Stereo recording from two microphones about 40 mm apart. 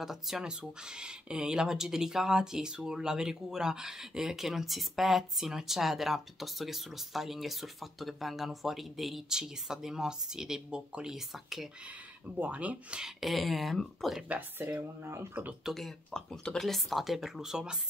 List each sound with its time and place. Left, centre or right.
0.0 s speech: centre
0.5 s speech: right; by 9.2 s centre
9.3 s speech: centre
12.4 s speech: right
13.2 s speech: centre
15.7 s speech: centre
16.1 s speech: centre
16.6 s speech: centre